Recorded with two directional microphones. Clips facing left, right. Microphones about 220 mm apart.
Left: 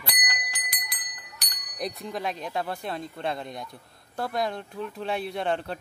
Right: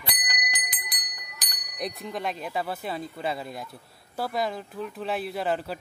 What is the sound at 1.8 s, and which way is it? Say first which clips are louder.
Speech: even; centre (ahead or behind).